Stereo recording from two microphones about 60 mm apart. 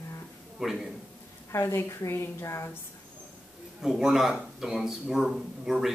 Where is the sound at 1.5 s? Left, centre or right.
Left.